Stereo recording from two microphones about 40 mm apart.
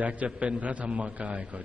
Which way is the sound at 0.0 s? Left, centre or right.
Right.